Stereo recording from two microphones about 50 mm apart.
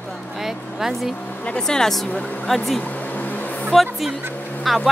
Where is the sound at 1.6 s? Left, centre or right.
Centre.